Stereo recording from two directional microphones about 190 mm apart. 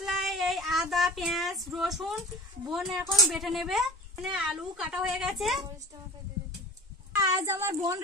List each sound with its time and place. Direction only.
0.0 s female singing: centre (ahead or behind)
2.6 s a woman's voice: centre (ahead or behind)
7.2 s a woman's voice: 15° right (ahead or behind)